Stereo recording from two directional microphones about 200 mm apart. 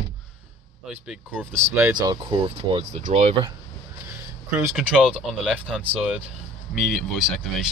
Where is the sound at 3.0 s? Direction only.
35° right (ahead or behind).